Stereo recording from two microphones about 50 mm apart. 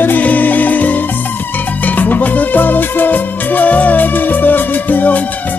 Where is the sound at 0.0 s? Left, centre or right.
Left.